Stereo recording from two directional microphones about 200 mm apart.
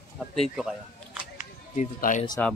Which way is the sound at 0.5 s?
Centre (ahead or behind).